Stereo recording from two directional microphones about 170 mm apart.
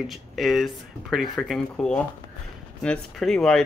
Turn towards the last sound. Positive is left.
turn(degrees=5)  # may be behind; listen again after turning